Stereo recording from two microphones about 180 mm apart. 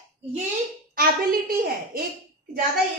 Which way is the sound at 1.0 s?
55° right (ahead or behind).